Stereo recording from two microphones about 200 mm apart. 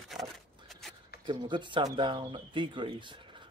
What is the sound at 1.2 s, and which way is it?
Speech, 25° right (ahead or behind).